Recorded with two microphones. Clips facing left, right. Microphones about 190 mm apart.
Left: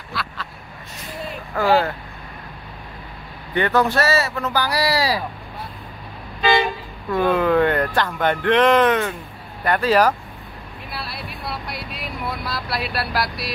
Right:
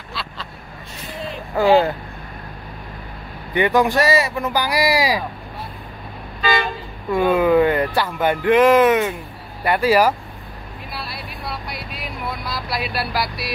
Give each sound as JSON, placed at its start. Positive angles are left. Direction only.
{"t": 1.5, "sound": "speech", "side_deg": -20}
{"t": 3.5, "sound": "speech", "side_deg": -15}
{"t": 7.1, "sound": "speech", "side_deg": -10}
{"t": 10.9, "sound": "vehicle", "side_deg": 0}